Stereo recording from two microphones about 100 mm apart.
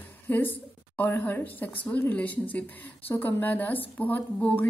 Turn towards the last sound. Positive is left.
turn(degrees=15)  # may be behind; listen again after turning